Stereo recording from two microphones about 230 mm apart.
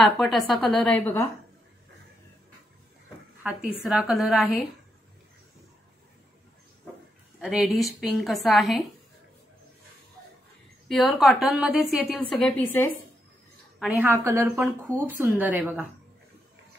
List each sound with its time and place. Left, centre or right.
0.0 s a woman's voice: centre
3.4 s a woman's voice: centre
7.3 s a woman's voice: centre
10.9 s a woman's voice: centre
13.7 s a woman's voice: centre